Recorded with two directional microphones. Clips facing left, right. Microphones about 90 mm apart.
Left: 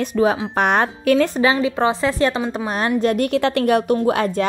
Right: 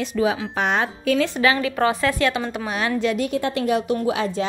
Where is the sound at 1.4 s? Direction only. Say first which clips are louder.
Left 2 dB; 25° left (ahead or behind).